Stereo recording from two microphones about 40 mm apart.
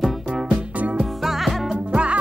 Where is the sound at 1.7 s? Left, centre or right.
Right.